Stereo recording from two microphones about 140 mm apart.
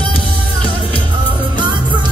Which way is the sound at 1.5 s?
35° right (ahead or behind).